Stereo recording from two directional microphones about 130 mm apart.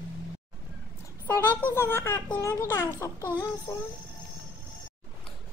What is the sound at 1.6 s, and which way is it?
A child's voice, 20° left (ahead or behind).